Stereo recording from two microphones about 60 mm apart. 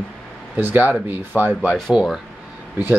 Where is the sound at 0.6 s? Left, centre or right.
Right.